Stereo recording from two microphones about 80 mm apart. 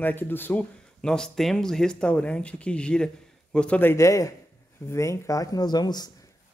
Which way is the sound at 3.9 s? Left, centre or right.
Left.